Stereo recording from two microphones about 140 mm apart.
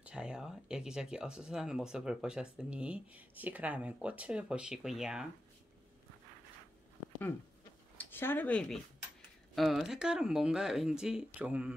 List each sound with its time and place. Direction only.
0.0 s speech: 5° right (ahead or behind)
8.0 s speech: 15° left (ahead or behind); by 11.7 s 10° right (ahead or behind)